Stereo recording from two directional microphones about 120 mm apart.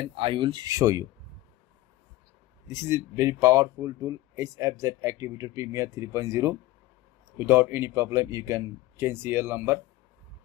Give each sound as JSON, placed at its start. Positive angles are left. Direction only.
{"t": 0.1, "sound": "speech", "side_deg": -45}
{"t": 0.7, "sound": "speech", "side_deg": -30}
{"t": 2.7, "sound": "speech", "side_deg": -25}